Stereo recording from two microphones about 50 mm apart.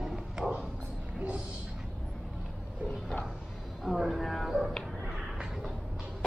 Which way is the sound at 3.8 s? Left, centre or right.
Centre.